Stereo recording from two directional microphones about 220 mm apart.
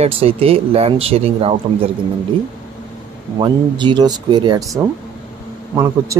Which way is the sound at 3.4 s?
20° right (ahead or behind).